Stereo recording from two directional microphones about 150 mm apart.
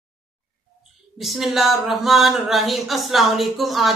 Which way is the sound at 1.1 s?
Centre (ahead or behind).